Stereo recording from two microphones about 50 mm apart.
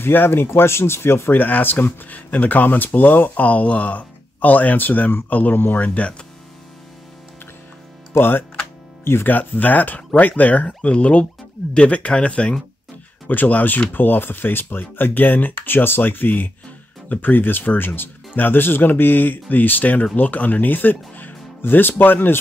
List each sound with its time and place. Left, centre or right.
0.0 s speech: left
1.4 s speech: left
8.2 s speech: left
9.3 s speech: left
13.3 s speech: left